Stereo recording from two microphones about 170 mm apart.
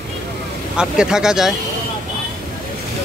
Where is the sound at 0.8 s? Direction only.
5° right (ahead or behind).